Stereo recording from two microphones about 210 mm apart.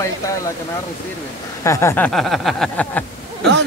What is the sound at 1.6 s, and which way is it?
Speech, 15° left (ahead or behind).